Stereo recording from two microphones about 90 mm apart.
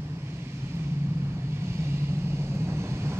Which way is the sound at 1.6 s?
30° right (ahead or behind).